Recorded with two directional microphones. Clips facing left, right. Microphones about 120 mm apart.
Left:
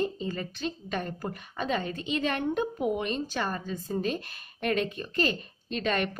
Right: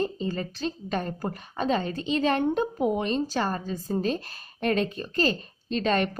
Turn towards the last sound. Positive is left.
turn(degrees=-35)  # may be behind; listen again after turning